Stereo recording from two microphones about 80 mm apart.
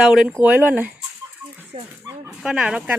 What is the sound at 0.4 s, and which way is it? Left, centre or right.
Speech, right.